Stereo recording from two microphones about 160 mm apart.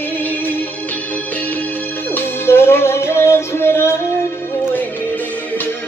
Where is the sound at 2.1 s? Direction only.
15° left (ahead or behind).